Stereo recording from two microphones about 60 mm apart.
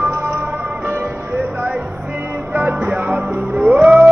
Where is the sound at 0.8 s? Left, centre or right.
Right.